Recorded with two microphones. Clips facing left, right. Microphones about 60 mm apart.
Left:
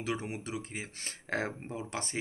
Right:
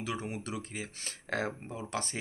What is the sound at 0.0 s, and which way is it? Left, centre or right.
Speech, left.